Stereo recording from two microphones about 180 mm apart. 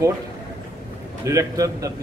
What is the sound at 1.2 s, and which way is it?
Speech, 20° right (ahead or behind).